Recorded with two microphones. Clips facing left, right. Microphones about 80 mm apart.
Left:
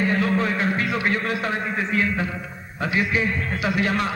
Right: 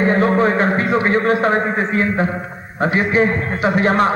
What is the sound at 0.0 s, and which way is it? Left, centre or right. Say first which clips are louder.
A man's voice: right 7 dB; right.